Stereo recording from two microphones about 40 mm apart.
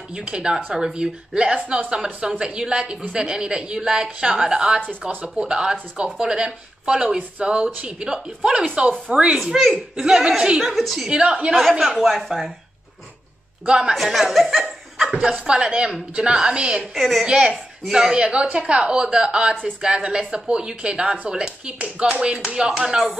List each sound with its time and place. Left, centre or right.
0.1 s a woman's voice: right
9.9 s speech: centre
10.6 s speech: centre
11.1 s a woman's voice: right
12.0 s speech: centre
13.7 s a woman's voice: right
13.9 s speech: centre
15.0 s a woman's voice: centre
16.9 s speech: centre
17.3 s a woman's voice: right
17.8 s speech: centre
18.2 s a woman's voice: right